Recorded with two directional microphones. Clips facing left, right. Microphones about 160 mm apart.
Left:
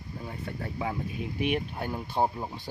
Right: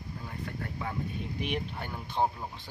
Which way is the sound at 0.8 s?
10° left (ahead or behind).